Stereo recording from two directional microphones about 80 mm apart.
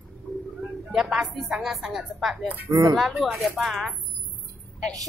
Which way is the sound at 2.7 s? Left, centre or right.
Right.